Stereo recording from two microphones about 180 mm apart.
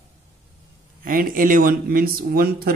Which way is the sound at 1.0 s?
50° right (ahead or behind).